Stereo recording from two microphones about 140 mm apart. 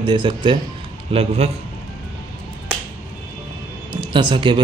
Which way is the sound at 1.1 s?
45° right (ahead or behind).